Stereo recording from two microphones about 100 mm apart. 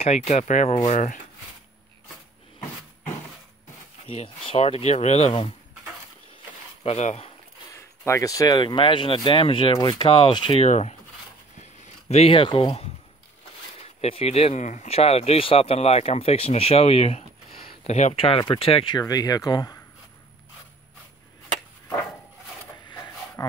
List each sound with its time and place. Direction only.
0.0 s speech: 90° left
4.5 s speech: 75° left (ahead or behind)
6.8 s speech: 80° left
7.7 s a sound: 30° left (ahead or behind)
8.5 s speech: 55° left (ahead or behind)
10.6 s speech: 90° left
12.1 s speech: 75° left (ahead or behind); by 12.7 s 60° left (ahead or behind)
13.7 s speech: 80° left
17.8 s speech: 70° left (ahead or behind)
18.9 s speech: 40° left (ahead or behind)
22.8 s a sound: 50° left (ahead or behind)